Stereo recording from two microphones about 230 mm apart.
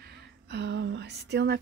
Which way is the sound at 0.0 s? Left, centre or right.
Right.